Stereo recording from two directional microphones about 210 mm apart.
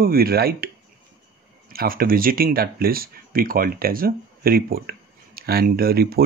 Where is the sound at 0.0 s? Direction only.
45° right (ahead or behind).